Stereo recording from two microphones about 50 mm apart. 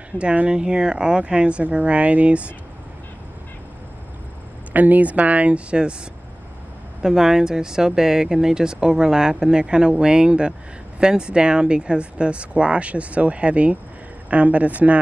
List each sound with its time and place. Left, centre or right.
0.2 s speech: right
4.7 s speech: right
7.0 s speech: centre; by 15.0 s right